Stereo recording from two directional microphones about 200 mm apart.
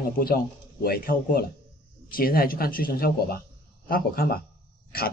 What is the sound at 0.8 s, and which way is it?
Speech, 50° left (ahead or behind).